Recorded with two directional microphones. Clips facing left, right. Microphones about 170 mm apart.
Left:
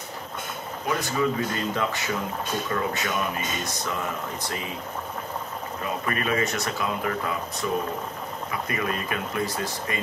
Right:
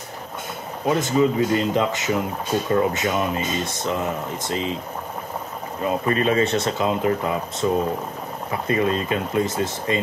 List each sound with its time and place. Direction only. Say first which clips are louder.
0.8 s speech: right 7 dB; 25° right (ahead or behind)
5.9 s speech: right 7 dB; 25° right (ahead or behind)